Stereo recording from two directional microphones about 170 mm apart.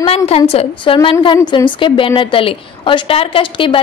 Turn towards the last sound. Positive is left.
turn(degrees=30)  # may be behind; listen again after turning